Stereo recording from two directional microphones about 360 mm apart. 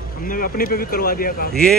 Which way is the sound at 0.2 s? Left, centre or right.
Left.